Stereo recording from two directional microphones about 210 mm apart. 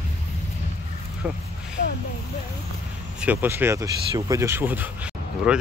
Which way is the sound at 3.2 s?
10° right (ahead or behind).